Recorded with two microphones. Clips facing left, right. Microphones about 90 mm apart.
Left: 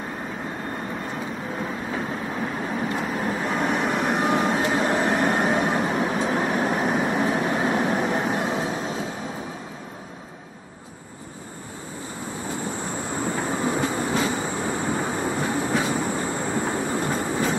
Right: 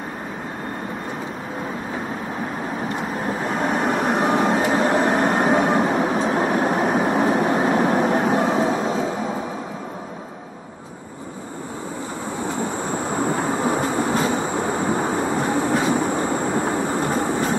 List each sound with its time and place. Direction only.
3.3 s vehicle: 35° right (ahead or behind)
4.7 s train: 35° right (ahead or behind); by 9.0 s 50° right (ahead or behind)
12.9 s train: 45° right (ahead or behind)